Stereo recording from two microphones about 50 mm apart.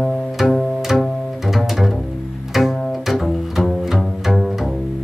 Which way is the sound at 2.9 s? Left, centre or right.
Centre.